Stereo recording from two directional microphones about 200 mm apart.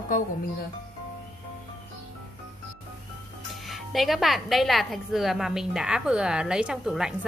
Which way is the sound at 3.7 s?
Centre (ahead or behind).